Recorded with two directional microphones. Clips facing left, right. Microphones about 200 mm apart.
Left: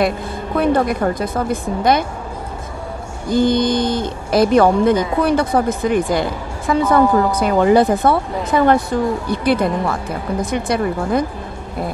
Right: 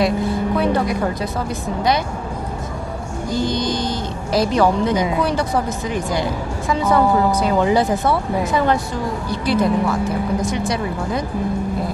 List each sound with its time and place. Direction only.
0.6 s a woman's voice: 50° left (ahead or behind)
3.3 s speech: 55° left (ahead or behind)